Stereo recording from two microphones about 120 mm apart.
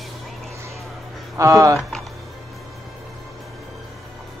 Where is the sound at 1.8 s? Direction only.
Centre (ahead or behind).